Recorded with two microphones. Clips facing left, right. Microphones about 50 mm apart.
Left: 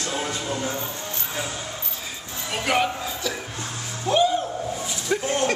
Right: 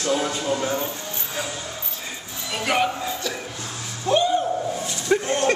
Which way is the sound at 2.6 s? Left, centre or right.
Centre.